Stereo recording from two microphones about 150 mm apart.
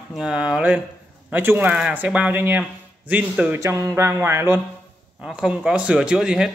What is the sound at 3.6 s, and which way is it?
Speech, 20° right (ahead or behind).